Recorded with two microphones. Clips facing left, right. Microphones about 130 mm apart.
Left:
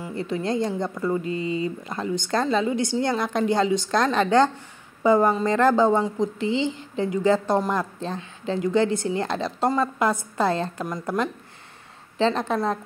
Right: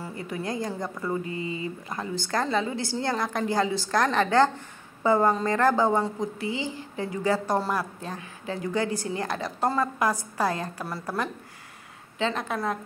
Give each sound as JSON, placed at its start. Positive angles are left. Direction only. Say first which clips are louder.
{"t": 0.3, "sound": "a woman's voice", "louder": "left 6 dB", "side_deg": 25}
{"t": 12.2, "sound": "a woman's voice", "louder": "left 6 dB", "side_deg": 30}